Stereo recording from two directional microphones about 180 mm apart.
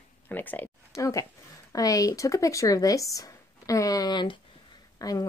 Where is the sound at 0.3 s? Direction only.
10° left (ahead or behind).